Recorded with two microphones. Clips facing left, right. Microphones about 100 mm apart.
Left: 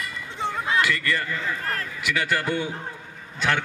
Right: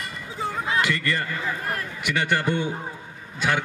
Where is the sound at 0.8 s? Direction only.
30° right (ahead or behind).